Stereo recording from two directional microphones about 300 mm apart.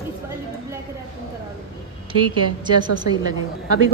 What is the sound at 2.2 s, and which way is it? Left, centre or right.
Speech, right.